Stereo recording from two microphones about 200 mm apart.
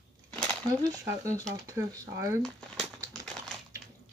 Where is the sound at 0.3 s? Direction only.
5° left (ahead or behind).